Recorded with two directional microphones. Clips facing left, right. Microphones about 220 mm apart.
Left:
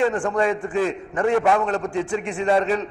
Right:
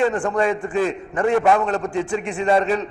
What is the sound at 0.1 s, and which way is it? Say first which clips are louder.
A man's voice: right 1 dB; 20° right (ahead or behind).